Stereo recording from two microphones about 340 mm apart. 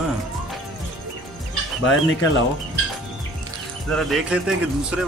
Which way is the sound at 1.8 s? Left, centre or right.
Left.